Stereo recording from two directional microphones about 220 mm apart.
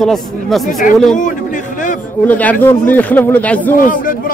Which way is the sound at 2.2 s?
5° left (ahead or behind).